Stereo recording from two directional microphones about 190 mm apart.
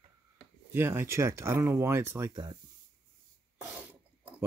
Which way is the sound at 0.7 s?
10° right (ahead or behind).